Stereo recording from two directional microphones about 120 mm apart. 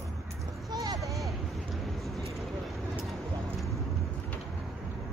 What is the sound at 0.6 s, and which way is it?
Speech, 35° right (ahead or behind).